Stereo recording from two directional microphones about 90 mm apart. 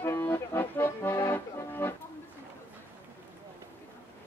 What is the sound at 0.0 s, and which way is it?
Accordion, 25° left (ahead or behind).